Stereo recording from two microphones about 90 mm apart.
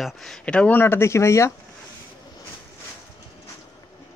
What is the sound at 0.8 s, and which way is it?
Speech, 25° left (ahead or behind).